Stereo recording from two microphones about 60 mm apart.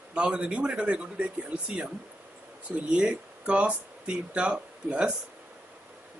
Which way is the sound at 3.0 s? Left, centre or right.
Centre.